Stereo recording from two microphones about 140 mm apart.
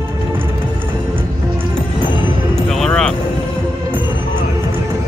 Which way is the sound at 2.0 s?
35° left (ahead or behind).